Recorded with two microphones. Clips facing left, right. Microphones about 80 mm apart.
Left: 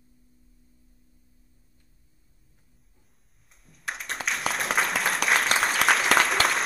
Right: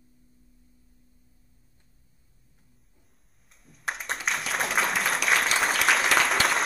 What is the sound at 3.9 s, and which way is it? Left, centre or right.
Applause, centre.